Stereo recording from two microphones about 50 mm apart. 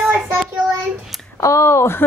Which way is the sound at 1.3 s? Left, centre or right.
Left.